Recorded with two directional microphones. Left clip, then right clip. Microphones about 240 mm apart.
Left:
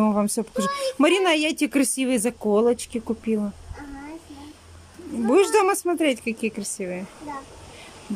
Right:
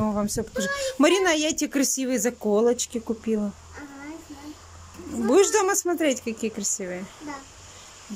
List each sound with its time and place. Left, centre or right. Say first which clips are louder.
0.0 s a woman's voice: left 4 dB; centre
5.2 s speech: left 1 dB; centre